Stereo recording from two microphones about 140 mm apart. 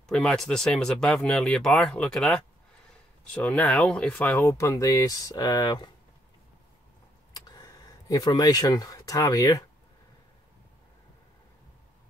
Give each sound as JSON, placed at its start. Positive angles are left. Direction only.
{"t": 0.0, "sound": "speech", "side_deg": 5}
{"t": 3.4, "sound": "speech", "side_deg": 5}
{"t": 4.5, "sound": "speech", "side_deg": 20}
{"t": 7.3, "sound": "speech", "side_deg": 25}